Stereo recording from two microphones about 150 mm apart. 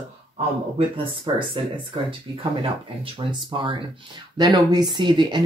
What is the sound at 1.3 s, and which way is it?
Speech, 35° right (ahead or behind).